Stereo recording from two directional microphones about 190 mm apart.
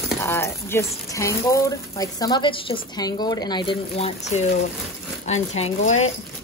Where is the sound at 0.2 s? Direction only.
15° left (ahead or behind); by 6.1 s 35° left (ahead or behind).